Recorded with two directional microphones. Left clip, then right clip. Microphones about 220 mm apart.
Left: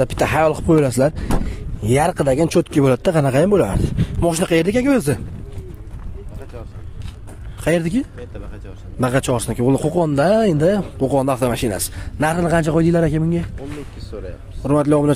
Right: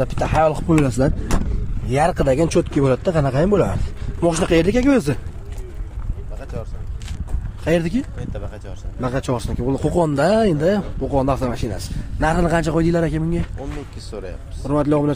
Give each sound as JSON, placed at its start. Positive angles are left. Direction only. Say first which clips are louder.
{"t": 0.0, "sound": "speech", "louder": "left 2 dB", "side_deg": 45}
{"t": 1.9, "sound": "speech", "louder": "left 1 dB", "side_deg": 35}
{"t": 7.6, "sound": "speech", "louder": "left 1 dB", "side_deg": 30}
{"t": 9.0, "sound": "speech", "louder": "left 4 dB", "side_deg": 40}
{"t": 9.9, "sound": "speech", "louder": "right 1 dB", "side_deg": 25}
{"t": 14.6, "sound": "speech", "louder": "left 3 dB", "side_deg": 35}